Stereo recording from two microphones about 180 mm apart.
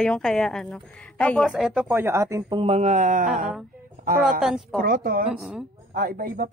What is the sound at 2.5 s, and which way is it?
Speech, 35° right (ahead or behind).